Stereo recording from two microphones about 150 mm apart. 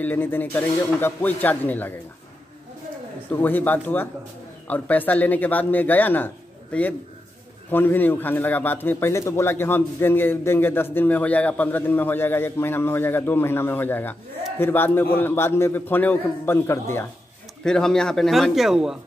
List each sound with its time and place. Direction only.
0.0 s a man's voice: 10° left (ahead or behind)
3.3 s a man's voice: 10° left (ahead or behind)
17.6 s speech: 5° left (ahead or behind)